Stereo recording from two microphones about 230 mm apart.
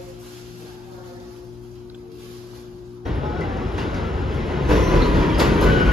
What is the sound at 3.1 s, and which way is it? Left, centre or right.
Train, centre.